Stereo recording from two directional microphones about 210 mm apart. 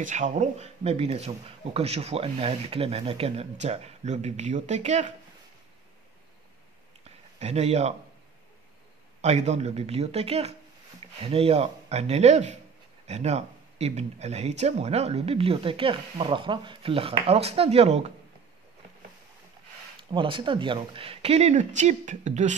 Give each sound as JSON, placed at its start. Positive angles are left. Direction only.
{"t": 0.0, "sound": "speech", "side_deg": -35}
{"t": 7.3, "sound": "speech", "side_deg": -30}
{"t": 9.2, "sound": "speech", "side_deg": -30}
{"t": 20.1, "sound": "speech", "side_deg": -25}